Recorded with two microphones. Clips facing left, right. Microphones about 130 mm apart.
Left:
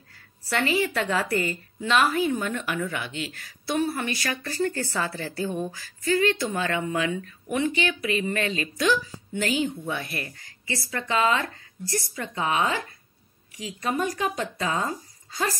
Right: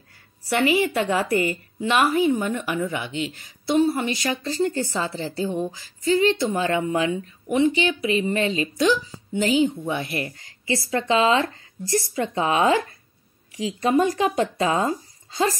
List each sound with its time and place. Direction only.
0.5 s a woman's voice: 15° right (ahead or behind)